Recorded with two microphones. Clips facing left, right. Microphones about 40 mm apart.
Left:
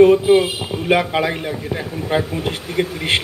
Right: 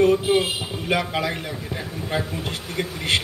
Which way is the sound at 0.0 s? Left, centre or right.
Centre.